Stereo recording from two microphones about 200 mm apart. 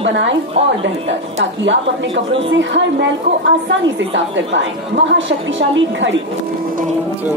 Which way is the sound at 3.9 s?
65° right (ahead or behind).